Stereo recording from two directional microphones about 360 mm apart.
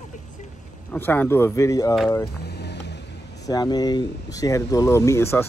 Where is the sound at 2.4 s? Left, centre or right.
Left.